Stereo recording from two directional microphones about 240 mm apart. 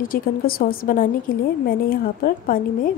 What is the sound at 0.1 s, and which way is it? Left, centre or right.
A woman's voice, left.